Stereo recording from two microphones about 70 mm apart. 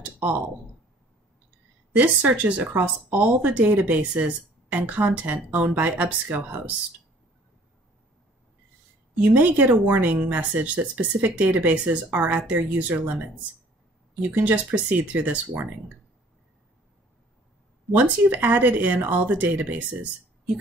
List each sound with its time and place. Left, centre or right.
0.0 s a sound: right
2.0 s speech: right
9.2 s speech: right
14.3 s speech: right
18.3 s speech: right